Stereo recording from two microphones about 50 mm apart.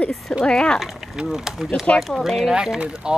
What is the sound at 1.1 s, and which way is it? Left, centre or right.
Speech, centre.